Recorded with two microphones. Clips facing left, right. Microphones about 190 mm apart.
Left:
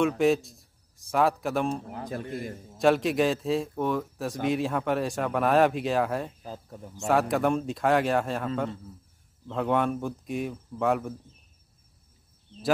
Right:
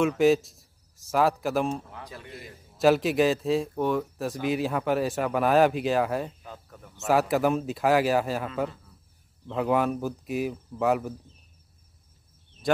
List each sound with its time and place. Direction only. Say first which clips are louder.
0.2 s a man's voice: right 2 dB; centre (ahead or behind)
2.0 s a man's voice: left 9 dB; 50° left (ahead or behind)
2.8 s a man's voice: right 1 dB; centre (ahead or behind)
6.4 s speech: left 4 dB; 35° left (ahead or behind)
7.1 s a man's voice: right 1 dB; 5° right (ahead or behind)
9.5 s a man's voice: right 1 dB; 5° right (ahead or behind)